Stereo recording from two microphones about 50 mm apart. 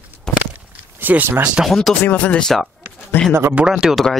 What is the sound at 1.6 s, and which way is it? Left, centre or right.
Speech, centre.